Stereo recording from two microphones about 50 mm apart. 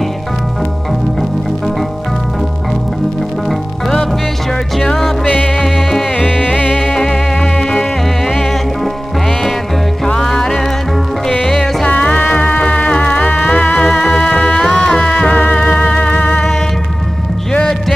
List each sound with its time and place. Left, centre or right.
4.8 s music: centre
5.2 s music: left
5.6 s music: centre
6.5 s music: left
6.8 s music: centre
8.3 s music: centre
10.0 s music: centre
11.9 s music: left
14.5 s music: centre
15.0 s music: left